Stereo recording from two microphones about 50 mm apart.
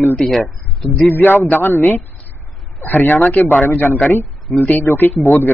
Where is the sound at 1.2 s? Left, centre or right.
Left.